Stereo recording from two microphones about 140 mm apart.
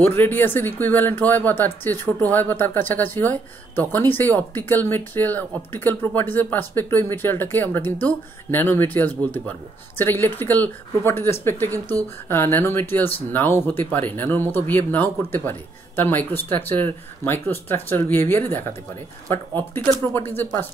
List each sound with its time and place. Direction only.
0.0 s speech: 15° left (ahead or behind)